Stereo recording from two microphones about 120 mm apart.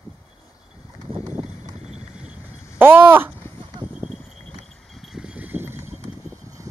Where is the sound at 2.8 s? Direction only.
20° right (ahead or behind).